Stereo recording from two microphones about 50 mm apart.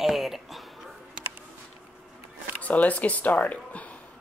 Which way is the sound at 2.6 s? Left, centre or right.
Left.